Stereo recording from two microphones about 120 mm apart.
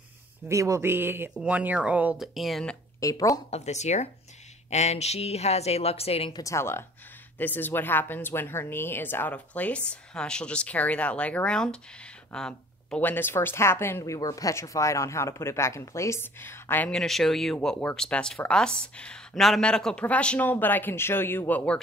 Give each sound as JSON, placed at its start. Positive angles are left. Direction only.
{"t": 0.5, "sound": "speech", "side_deg": -25}
{"t": 2.2, "sound": "speech", "side_deg": 0}
{"t": 3.0, "sound": "speech", "side_deg": 25}
{"t": 3.4, "sound": "a woman's voice", "side_deg": 65}
{"t": 6.3, "sound": "speech", "side_deg": 25}
{"t": 16.9, "sound": "speech", "side_deg": 5}